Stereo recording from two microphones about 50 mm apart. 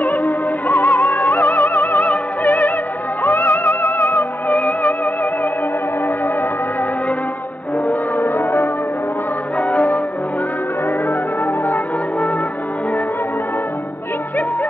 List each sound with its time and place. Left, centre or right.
0.0 s music: left
8.2 s music: left
9.6 s music: left
11.6 s music: left